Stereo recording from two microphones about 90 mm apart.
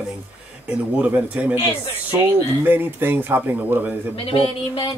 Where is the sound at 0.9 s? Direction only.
15° right (ahead or behind).